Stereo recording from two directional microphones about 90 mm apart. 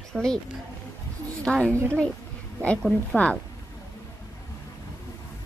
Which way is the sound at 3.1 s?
15° left (ahead or behind).